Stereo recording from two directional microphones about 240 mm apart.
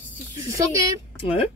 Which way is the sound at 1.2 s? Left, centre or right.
Left.